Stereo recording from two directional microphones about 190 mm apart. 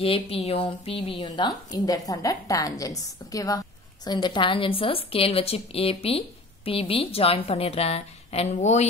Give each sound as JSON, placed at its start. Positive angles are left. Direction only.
{"t": 0.0, "sound": "a woman's voice", "side_deg": 30}